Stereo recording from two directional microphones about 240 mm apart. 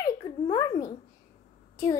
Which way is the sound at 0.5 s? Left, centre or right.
Centre.